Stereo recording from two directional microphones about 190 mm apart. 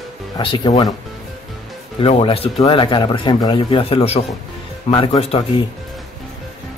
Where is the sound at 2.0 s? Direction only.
30° left (ahead or behind).